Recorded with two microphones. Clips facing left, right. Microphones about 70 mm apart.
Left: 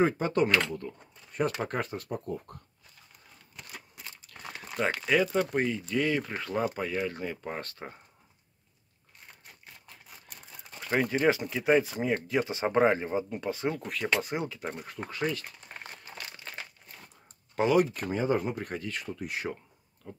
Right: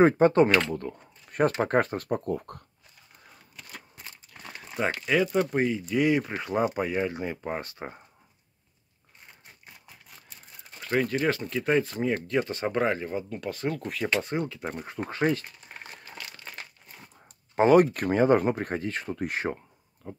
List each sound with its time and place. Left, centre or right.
0.0 s speech: right
1.5 s speech: right
1.8 s speech: right
4.3 s crumpling: centre
4.7 s speech: centre
10.9 s speech: centre
12.4 s speech: centre
14.7 s speech: right
15.0 s speech: right
16.5 s crumpling: centre
17.6 s speech: right
17.9 s speech: right
18.7 s speech: right
20.1 s speech: right